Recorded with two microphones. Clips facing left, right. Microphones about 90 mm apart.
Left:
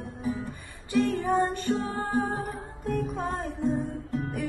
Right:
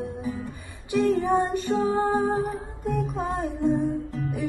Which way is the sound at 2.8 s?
15° right (ahead or behind).